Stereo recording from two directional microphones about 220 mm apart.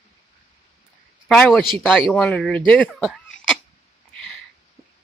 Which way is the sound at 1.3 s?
Centre (ahead or behind).